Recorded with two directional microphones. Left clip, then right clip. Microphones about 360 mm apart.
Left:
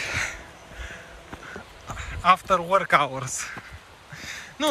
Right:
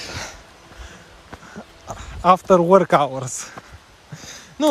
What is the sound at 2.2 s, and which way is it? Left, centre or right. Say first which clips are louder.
Speech: right 6 dB; centre.